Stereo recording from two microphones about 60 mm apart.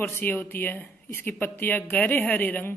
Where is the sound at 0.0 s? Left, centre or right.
Left.